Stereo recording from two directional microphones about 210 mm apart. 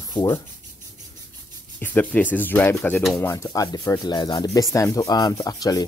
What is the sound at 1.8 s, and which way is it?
Speech, 10° left (ahead or behind).